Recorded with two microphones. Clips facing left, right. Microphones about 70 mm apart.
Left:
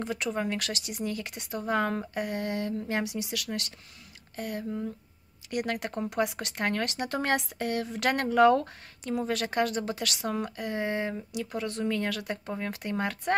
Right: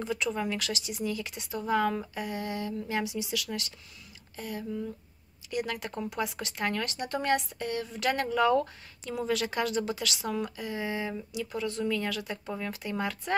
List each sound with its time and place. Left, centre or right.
0.0 s speech: left